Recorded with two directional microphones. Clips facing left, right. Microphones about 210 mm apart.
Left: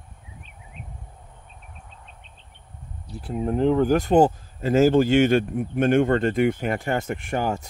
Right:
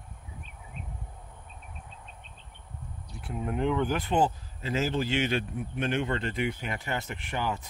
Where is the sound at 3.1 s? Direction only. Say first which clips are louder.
Left 8 dB; 35° left (ahead or behind).